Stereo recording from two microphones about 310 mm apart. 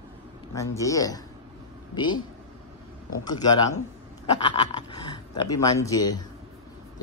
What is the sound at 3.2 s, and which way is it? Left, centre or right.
Speech, centre.